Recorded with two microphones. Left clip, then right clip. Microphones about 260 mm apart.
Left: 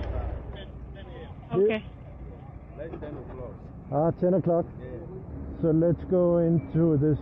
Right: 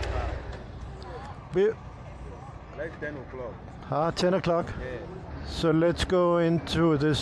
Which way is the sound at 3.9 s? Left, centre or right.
Right.